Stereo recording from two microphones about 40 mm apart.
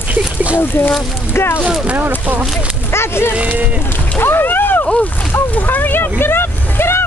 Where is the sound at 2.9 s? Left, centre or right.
Left.